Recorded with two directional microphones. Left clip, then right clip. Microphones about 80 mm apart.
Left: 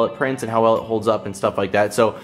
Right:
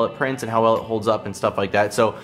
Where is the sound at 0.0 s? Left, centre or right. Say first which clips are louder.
Left 2 dB; right.